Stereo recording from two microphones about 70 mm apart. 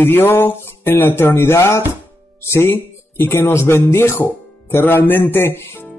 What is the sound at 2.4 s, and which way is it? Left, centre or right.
Speech, left.